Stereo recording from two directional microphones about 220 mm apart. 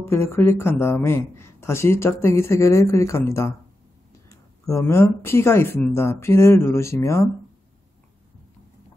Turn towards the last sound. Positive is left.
turn(degrees=15)  # may be behind; listen again after turning